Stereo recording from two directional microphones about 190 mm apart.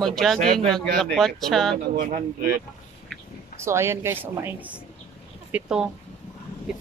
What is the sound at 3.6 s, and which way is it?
A woman's voice, 15° right (ahead or behind).